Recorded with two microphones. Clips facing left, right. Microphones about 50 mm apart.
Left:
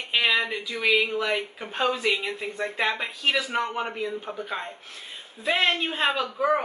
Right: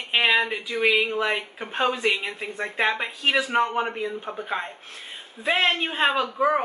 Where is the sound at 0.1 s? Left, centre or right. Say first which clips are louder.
Right 3 dB; right.